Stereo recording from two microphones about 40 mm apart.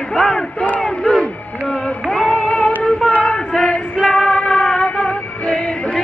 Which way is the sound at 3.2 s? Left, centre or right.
Left.